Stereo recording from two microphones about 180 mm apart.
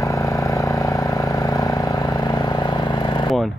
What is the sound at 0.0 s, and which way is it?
Vehicle, 20° left (ahead or behind).